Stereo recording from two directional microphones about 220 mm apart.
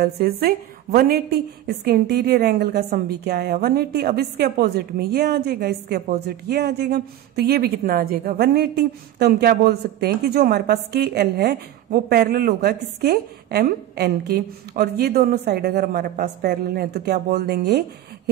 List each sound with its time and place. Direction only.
0.0 s speech: 45° right (ahead or behind)